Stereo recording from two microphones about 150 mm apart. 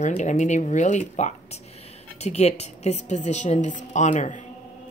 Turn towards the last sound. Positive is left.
turn(degrees=55)  # may be behind; listen again after turning